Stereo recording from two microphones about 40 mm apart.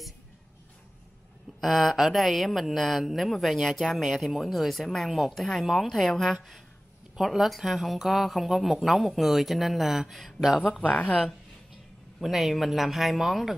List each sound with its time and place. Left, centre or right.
1.6 s speech: centre
10.6 s speech: left
12.2 s speech: centre